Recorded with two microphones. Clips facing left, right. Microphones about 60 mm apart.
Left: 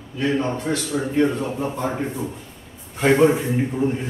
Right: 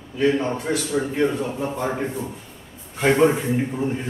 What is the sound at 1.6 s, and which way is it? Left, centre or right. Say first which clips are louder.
Speech: even; centre.